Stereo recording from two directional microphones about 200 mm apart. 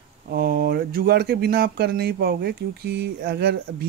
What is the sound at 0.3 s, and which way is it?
Speech, 50° right (ahead or behind).